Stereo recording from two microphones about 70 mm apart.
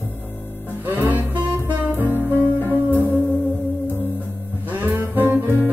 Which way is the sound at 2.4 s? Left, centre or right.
Left.